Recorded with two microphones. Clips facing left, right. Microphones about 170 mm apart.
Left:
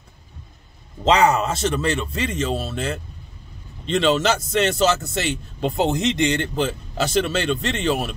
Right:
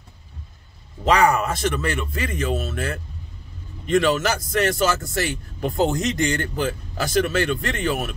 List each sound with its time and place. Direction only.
1.0 s speech: 20° left (ahead or behind)